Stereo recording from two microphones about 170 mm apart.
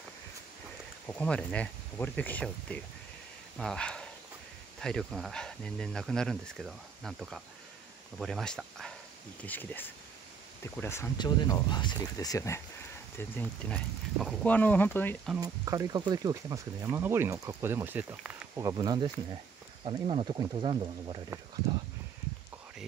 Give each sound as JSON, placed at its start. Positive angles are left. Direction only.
{"t": 1.0, "sound": "speech", "side_deg": 10}
{"t": 15.4, "sound": "speech", "side_deg": -20}
{"t": 18.7, "sound": "speech", "side_deg": -20}
{"t": 19.8, "sound": "speech", "side_deg": -35}